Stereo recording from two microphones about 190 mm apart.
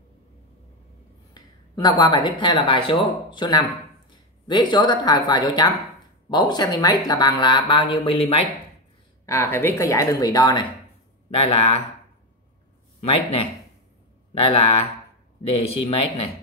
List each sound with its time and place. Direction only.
1.3 s a woman's voice: 20° left (ahead or behind)
9.2 s a woman's voice: 15° left (ahead or behind); by 11.8 s 30° left (ahead or behind)
13.0 s speech: 30° left (ahead or behind)